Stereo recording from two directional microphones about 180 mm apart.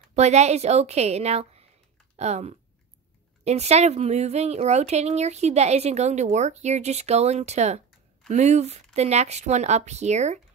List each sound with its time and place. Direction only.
0.1 s a woman's voice: 40° right (ahead or behind)